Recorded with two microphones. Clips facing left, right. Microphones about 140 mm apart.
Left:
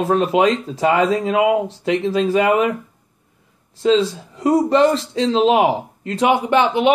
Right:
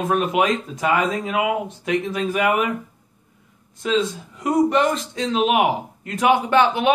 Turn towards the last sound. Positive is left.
turn(degrees=20)  # may be behind; listen again after turning